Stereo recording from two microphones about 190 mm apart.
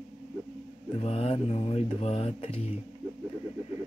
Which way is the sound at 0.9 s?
30° left (ahead or behind).